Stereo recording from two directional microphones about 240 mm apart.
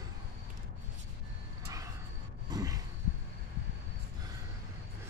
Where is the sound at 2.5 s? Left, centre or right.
Centre.